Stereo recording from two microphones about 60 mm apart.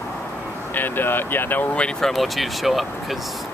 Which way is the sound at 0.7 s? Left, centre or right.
Left.